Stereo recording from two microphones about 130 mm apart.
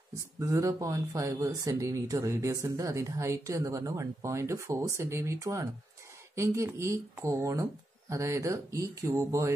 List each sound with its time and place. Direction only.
0.1 s speech: 25° right (ahead or behind)